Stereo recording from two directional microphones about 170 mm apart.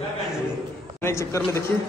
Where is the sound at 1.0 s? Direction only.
15° left (ahead or behind).